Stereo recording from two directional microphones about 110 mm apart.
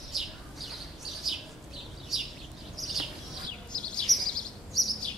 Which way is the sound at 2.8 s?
Centre (ahead or behind).